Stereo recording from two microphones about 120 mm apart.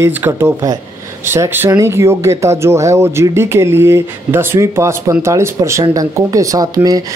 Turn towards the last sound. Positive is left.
turn(degrees=-30)  # may be behind; listen again after turning